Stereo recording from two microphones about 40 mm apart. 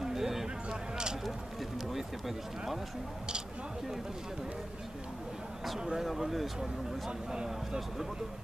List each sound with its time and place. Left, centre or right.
0.0 s a sound: centre
1.9 s speech: centre
5.9 s speech: centre